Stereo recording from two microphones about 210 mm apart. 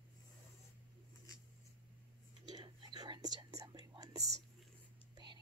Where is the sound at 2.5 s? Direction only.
20° right (ahead or behind).